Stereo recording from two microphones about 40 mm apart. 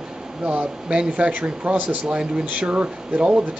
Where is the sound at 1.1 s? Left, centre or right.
Right.